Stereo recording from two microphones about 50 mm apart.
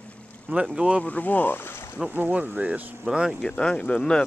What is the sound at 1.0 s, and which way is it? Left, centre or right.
Speech, left.